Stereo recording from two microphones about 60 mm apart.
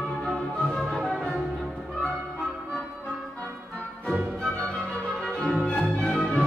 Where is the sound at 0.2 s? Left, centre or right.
Centre.